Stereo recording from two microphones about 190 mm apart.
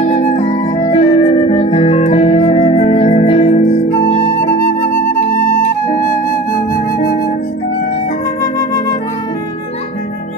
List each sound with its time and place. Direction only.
0.0 s music: 40° left (ahead or behind)
0.7 s music: 30° left (ahead or behind)
5.9 s music: 45° left (ahead or behind)